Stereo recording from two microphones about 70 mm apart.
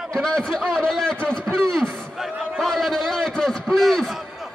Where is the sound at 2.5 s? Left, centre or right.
Centre.